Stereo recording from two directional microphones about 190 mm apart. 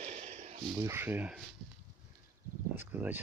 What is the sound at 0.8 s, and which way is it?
Speech, 10° right (ahead or behind).